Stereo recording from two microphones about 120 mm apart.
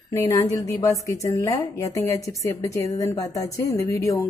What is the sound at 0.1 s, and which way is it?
A woman's voice, 25° left (ahead or behind).